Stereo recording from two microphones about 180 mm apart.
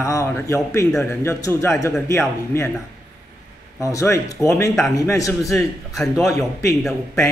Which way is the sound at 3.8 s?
15° left (ahead or behind).